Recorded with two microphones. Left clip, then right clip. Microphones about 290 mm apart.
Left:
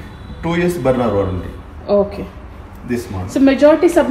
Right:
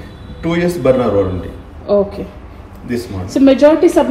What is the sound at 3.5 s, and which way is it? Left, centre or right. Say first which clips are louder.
Speech: right 2 dB; centre.